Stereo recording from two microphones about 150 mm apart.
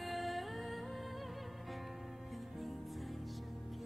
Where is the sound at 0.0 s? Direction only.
Centre (ahead or behind).